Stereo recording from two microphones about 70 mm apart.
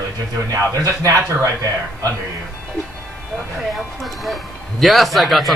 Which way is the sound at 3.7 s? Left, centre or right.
Centre.